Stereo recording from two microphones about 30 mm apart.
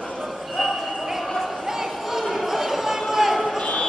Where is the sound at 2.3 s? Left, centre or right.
Centre.